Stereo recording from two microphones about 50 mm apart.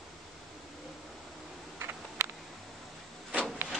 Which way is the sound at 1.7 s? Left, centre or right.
Right.